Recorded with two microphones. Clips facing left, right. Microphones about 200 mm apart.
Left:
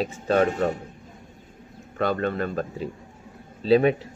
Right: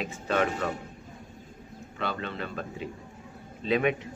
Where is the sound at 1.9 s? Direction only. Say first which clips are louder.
Left 9 dB; 50° left (ahead or behind).